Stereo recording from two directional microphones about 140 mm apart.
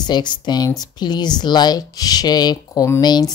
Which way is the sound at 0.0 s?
30° left (ahead or behind).